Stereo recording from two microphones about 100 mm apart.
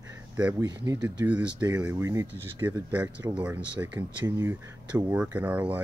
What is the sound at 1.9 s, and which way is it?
Speech, 30° right (ahead or behind).